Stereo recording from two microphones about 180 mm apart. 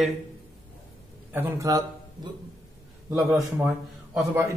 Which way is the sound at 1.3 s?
15° right (ahead or behind).